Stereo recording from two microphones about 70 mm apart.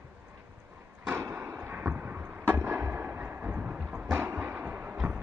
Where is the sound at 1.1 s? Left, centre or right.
Right.